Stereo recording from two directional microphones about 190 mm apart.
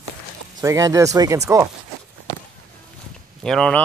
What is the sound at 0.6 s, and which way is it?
Speech, 20° right (ahead or behind).